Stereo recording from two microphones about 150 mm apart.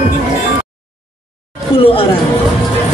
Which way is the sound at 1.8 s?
40° left (ahead or behind).